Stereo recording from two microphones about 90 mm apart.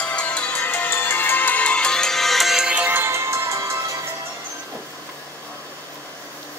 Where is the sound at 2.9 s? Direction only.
30° right (ahead or behind).